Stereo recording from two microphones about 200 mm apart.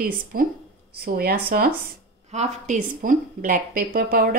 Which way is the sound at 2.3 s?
35° right (ahead or behind).